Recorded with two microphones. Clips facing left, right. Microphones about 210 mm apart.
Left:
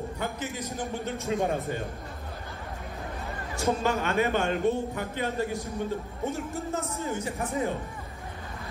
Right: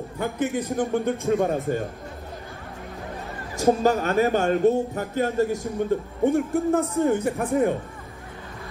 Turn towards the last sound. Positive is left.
turn(degrees=-50)  # may be behind; listen again after turning